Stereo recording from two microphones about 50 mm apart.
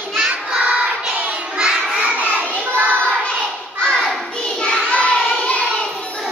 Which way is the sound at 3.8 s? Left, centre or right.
Centre.